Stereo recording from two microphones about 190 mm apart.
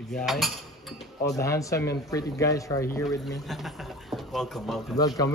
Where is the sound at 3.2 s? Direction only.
Centre (ahead or behind).